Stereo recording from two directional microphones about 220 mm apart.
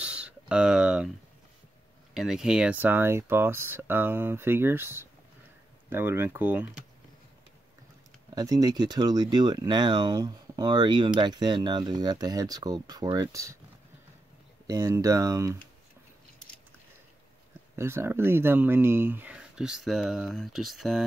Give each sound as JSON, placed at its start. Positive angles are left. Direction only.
{"t": 0.0, "sound": "a sound", "side_deg": -5}
{"t": 2.1, "sound": "speech", "side_deg": 0}
{"t": 8.4, "sound": "speech", "side_deg": -15}
{"t": 14.7, "sound": "speech", "side_deg": -15}
{"t": 17.7, "sound": "speech", "side_deg": -10}